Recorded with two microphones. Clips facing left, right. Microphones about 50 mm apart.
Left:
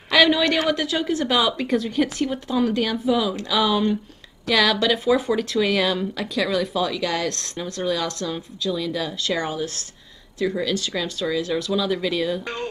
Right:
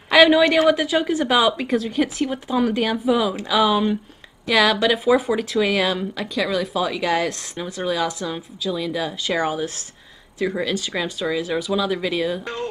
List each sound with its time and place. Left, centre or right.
0.1 s a woman's voice: centre
6.9 s speech: centre